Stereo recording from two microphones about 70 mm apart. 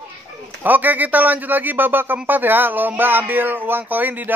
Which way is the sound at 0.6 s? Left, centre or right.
Right.